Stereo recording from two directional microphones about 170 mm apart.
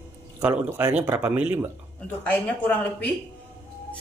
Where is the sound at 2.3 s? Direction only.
10° left (ahead or behind).